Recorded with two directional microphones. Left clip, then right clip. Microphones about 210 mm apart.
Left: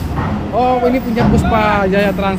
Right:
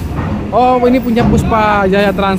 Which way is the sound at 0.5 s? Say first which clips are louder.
Right 4 dB; 20° right (ahead or behind).